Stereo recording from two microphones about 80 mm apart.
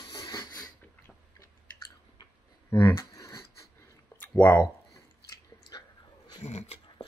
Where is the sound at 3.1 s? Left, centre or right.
Left.